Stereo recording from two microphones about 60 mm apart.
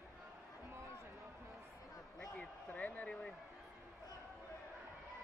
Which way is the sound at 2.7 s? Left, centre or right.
Left.